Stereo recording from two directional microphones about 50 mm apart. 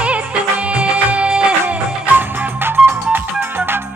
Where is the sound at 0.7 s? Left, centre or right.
Right.